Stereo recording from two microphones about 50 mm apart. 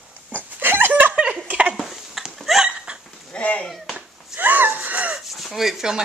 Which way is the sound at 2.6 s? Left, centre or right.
Centre.